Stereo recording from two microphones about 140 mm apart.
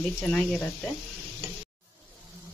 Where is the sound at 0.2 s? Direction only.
10° left (ahead or behind).